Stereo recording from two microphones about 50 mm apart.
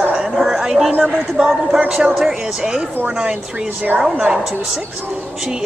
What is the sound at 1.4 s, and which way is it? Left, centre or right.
Speech, centre.